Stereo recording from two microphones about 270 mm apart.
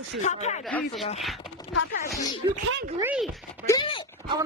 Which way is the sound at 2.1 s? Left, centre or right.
Centre.